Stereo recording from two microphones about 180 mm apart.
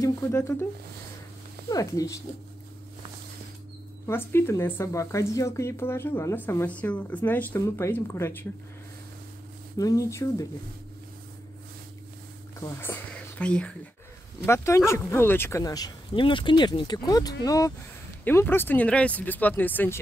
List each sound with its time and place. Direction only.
0.0 s speech: 15° left (ahead or behind)
1.7 s speech: 20° left (ahead or behind)
4.1 s speech: 15° left (ahead or behind)
9.8 s speech: 20° left (ahead or behind)
12.5 s speech: 15° left (ahead or behind)